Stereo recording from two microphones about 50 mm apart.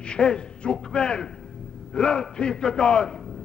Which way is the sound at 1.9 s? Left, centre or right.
Centre.